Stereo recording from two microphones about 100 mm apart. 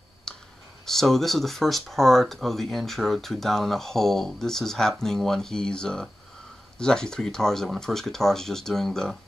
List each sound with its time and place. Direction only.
0.3 s clicking: 5° left (ahead or behind)
0.8 s speech: 5° left (ahead or behind)